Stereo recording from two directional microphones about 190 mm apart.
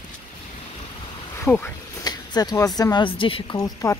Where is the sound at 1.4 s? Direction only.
10° left (ahead or behind).